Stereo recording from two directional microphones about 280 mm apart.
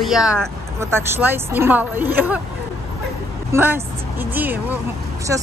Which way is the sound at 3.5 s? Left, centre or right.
Centre.